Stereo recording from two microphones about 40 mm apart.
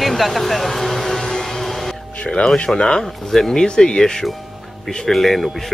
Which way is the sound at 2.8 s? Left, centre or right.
Centre.